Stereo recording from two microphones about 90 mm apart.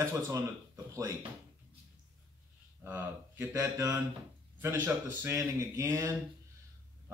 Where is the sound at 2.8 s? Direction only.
30° right (ahead or behind).